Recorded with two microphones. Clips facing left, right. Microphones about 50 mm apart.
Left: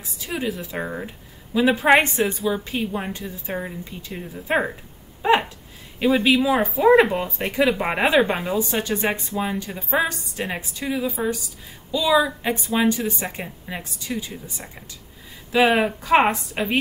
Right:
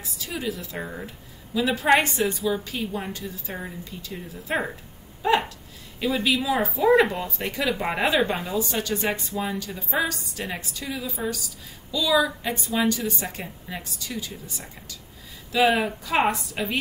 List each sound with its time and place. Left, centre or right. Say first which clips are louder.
0.2 s a woman's voice: left 4 dB; left
5.2 s a sound: left 3 dB; left
5.9 s a woman's voice: left 6 dB; left
15.7 s a woman's voice: left 6 dB; left